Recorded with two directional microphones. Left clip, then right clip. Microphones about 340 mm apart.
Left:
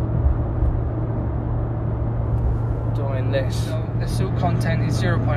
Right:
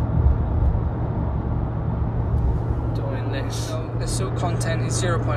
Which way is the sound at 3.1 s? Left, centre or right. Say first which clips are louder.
Left 9 dB; centre.